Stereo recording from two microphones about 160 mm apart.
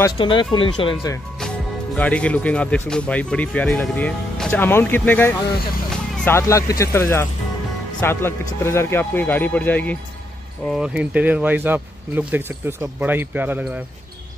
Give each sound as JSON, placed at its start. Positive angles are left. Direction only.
{"t": 0.2, "sound": "speech", "side_deg": 30}
{"t": 2.0, "sound": "speech", "side_deg": 10}
{"t": 10.7, "sound": "speech", "side_deg": -5}